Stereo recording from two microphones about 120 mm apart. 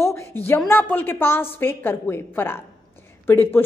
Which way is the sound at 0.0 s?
20° left (ahead or behind).